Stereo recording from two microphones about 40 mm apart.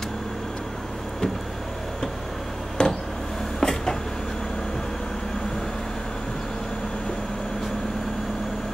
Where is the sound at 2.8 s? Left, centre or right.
Left.